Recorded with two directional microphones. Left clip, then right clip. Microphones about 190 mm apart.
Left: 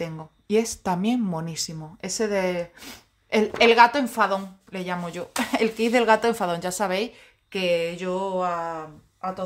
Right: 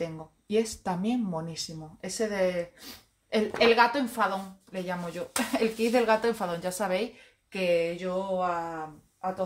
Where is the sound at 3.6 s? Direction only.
45° left (ahead or behind).